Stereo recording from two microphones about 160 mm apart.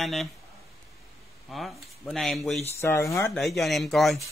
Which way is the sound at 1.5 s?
Centre (ahead or behind).